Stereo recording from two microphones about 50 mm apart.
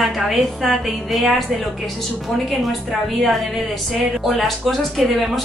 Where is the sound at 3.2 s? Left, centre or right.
Centre.